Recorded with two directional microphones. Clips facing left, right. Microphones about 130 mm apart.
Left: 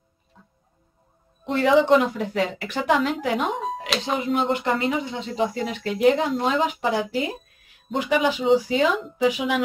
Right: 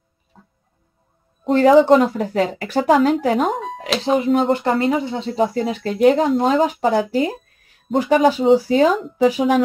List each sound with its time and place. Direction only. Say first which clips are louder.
1.4 s speech: right 7 dB; 40° right (ahead or behind)
3.5 s music: right 1 dB; centre (ahead or behind)
4.0 s speech: right 8 dB; 35° right (ahead or behind)